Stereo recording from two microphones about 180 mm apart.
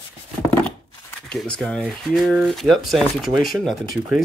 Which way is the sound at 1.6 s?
5° left (ahead or behind).